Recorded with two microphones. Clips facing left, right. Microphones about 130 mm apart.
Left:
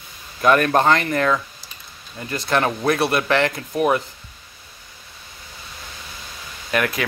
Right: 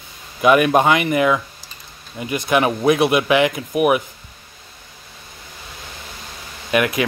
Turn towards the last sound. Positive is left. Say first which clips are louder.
# right 4 dB
turn(degrees=-15)  # may be behind; listen again after turning